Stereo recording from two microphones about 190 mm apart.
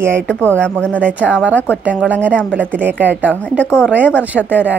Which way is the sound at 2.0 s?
10° right (ahead or behind).